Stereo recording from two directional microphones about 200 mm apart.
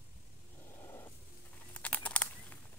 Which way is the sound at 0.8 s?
15° left (ahead or behind).